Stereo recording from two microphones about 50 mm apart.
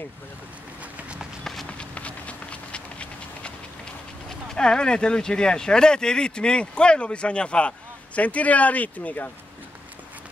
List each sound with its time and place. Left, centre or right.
1.4 s run: centre
1.7 s a sound: left
4.6 s speech: centre; by 9.3 s left